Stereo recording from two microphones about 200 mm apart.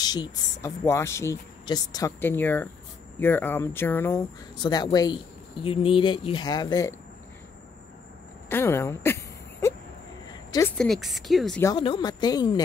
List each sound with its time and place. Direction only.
0.0 s speech: 20° left (ahead or behind)
8.5 s a sound: 10° left (ahead or behind)
10.8 s speech: centre (ahead or behind)
11.6 s speech: 25° left (ahead or behind)